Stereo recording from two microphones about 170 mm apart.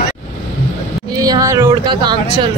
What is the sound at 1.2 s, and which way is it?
Speech, 20° right (ahead or behind).